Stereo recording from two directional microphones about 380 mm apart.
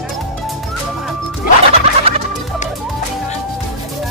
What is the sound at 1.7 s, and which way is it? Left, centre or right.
Music, centre.